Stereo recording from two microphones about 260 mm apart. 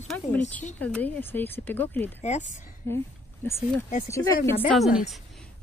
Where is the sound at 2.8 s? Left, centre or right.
Centre.